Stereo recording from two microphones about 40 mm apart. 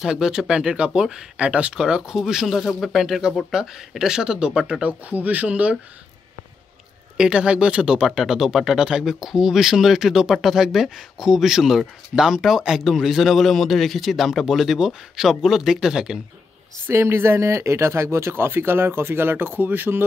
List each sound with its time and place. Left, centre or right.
0.0 s a man's voice: centre
2.4 s a man's voice: centre; by 4.8 s right
5.1 s speech: right
7.2 s speech: right
8.2 s a man's voice: centre
16.8 s speech: right